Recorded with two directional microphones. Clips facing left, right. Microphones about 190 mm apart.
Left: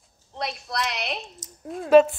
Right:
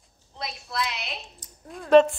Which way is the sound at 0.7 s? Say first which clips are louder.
Left 2 dB; 45° left (ahead or behind).